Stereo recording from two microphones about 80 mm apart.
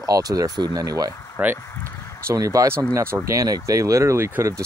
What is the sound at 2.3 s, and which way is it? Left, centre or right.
Speech, right.